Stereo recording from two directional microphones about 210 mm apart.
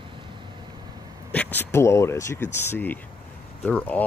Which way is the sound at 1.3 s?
10° left (ahead or behind).